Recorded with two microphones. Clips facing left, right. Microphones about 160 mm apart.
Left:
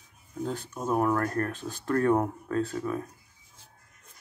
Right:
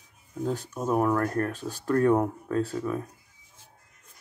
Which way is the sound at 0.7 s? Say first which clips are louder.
Right 1 dB; 5° right (ahead or behind).